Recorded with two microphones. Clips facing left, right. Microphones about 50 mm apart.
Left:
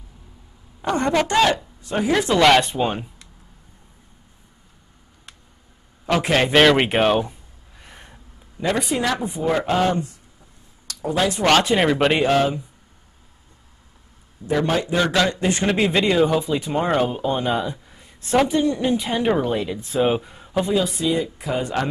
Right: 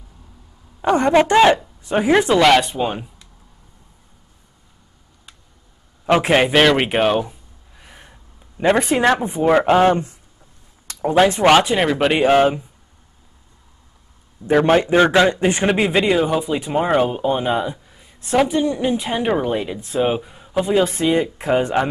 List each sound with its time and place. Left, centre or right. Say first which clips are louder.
0.8 s a man's voice: right 6 dB; right
2.3 s speech: left 2 dB; centre
6.0 s a man's voice: right 4 dB; right
6.4 s a sound: even; centre
8.5 s speech: right 6 dB; right
11.4 s speech: right 2 dB; centre
11.7 s speech: right 1 dB; centre
12.2 s a man's voice: right 4 dB; right
14.5 s a man's voice: right 7 dB; right; by 17.7 s centre
17.8 s a woman's voice: right 4 dB; centre
20.7 s speech: right 6 dB; right